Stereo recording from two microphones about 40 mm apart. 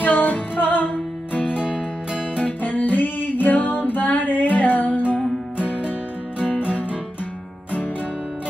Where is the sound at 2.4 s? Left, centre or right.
Left.